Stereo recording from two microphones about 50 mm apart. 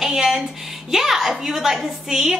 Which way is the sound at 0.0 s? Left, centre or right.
Centre.